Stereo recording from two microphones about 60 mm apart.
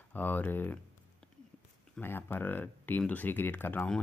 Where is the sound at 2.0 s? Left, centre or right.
Left.